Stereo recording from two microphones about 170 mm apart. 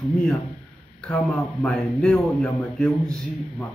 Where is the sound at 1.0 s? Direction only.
5° left (ahead or behind).